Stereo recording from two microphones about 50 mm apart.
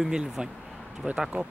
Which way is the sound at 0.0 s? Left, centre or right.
Centre.